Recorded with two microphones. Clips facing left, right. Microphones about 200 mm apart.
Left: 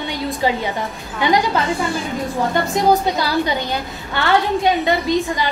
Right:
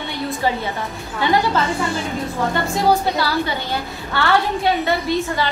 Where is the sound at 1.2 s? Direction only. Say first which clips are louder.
Left 2 dB; 15° left (ahead or behind).